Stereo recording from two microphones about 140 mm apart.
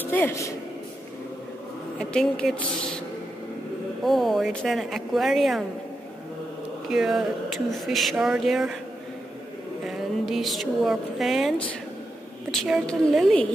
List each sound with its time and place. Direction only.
0.0 s speech: 15° left (ahead or behind)
2.0 s speech: 5° left (ahead or behind)
4.0 s speech: centre (ahead or behind)
6.9 s speech: 5° right (ahead or behind)
9.8 s speech: centre (ahead or behind)